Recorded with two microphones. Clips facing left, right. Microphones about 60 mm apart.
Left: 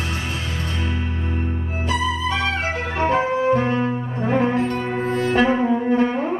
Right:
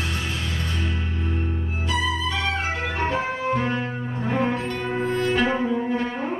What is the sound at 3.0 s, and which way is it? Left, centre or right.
Music, left.